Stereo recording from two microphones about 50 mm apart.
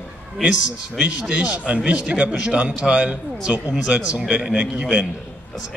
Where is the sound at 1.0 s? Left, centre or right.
Right.